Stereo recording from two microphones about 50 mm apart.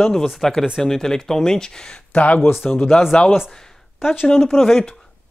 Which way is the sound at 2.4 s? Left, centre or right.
Left.